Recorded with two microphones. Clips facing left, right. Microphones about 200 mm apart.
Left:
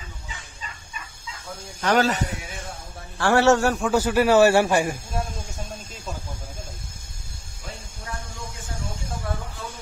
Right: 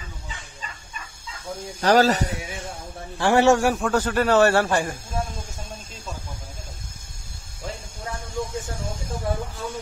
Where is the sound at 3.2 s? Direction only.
15° right (ahead or behind).